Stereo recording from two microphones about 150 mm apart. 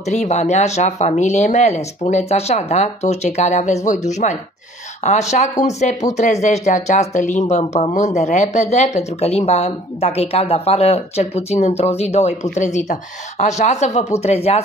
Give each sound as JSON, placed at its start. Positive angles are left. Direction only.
{"t": 0.0, "sound": "speech", "side_deg": 50}